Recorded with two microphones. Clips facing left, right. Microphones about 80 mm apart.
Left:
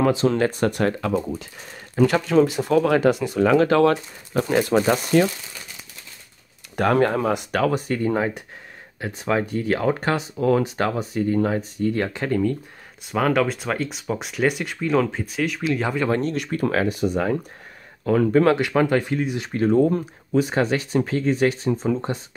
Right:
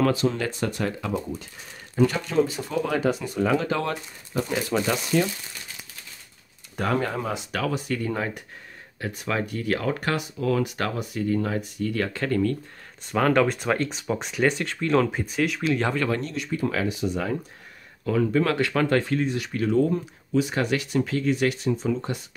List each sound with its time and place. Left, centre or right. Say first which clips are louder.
0.4 s speech: left 7 dB; left
2.0 s speech: left 5 dB; left
4.6 s speech: left 7 dB; left
6.8 s speech: left 7 dB; left
9.0 s speech: left 5 dB; left
13.0 s speech: even; centre
16.1 s speech: left 5 dB; left
16.3 s speech: left 3 dB; left
16.7 s speech: left 5 dB; left
18.6 s speech: left 3 dB; centre
19.3 s speech: left 8 dB; left